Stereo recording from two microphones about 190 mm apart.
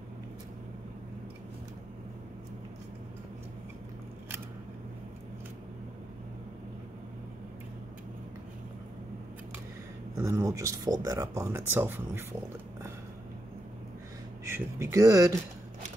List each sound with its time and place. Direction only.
10.1 s speech: 15° right (ahead or behind)
14.5 s speech: 15° right (ahead or behind)